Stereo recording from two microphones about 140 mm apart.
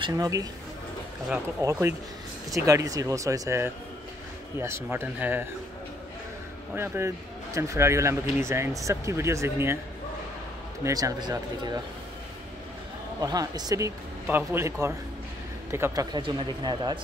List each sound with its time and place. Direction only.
0.0 s speech: 25° right (ahead or behind)
1.6 s speech: 20° right (ahead or behind)
6.7 s speech: 15° right (ahead or behind)
10.8 s speech: 25° right (ahead or behind)
13.2 s speech: 30° right (ahead or behind)